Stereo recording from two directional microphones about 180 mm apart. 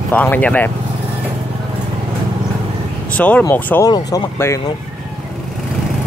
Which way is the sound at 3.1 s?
10° left (ahead or behind).